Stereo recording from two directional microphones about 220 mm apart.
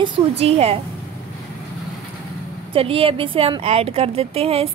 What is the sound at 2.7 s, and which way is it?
Speech, 25° right (ahead or behind).